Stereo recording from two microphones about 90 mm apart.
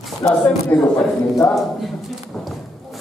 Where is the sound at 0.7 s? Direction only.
20° left (ahead or behind).